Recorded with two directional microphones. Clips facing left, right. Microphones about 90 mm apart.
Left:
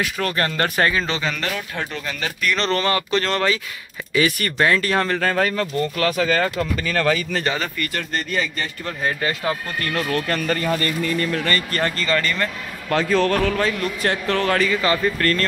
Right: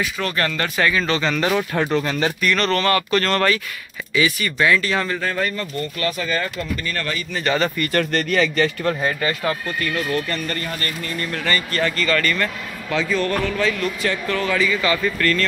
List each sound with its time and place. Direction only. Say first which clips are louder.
0.2 s speech: left 2 dB; 40° left (ahead or behind)
2.0 s speech: right 6 dB; 30° right (ahead or behind)
2.5 s speech: even; 25° left (ahead or behind)
4.1 s speech: even; 40° left (ahead or behind)
5.2 s speech: left 3 dB; 75° left (ahead or behind)
7.9 s speech: right 5 dB; 70° right (ahead or behind); by 8.6 s 90° right
9.2 s speech: right 1 dB; 15° left (ahead or behind)
10.2 s speech: left 4 dB; 90° left
11.4 s speech: right 1 dB; 45° left (ahead or behind)
12.0 s speech: right 2 dB; 25° left (ahead or behind)
12.9 s a man's voice: left 3 dB; 70° left (ahead or behind)
13.6 s speech: even; 45° left (ahead or behind)
14.2 s speech: left 1 dB; 60° left (ahead or behind)
14.8 s speech: left 1 dB; 35° left (ahead or behind)